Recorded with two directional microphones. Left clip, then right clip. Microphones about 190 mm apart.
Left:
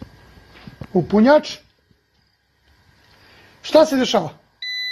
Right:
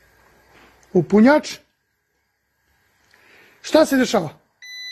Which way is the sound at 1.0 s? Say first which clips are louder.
Left 2 dB; 45° right (ahead or behind).